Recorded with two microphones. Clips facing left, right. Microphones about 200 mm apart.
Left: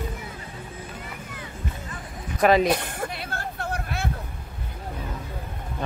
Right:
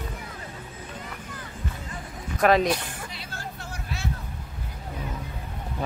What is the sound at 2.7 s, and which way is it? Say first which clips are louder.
Vehicle: left 4 dB; 55° left (ahead or behind).